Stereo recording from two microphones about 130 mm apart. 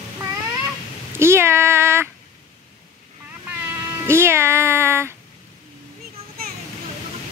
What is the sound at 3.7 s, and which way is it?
Music, 20° right (ahead or behind).